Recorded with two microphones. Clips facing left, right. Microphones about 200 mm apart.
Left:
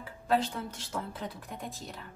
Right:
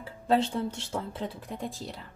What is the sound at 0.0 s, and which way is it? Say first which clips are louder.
A woman's voice: right 3 dB; 30° right (ahead or behind).